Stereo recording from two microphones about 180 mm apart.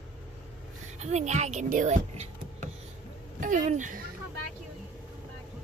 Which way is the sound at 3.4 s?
45° right (ahead or behind).